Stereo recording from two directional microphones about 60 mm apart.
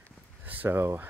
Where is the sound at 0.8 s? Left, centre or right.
Right.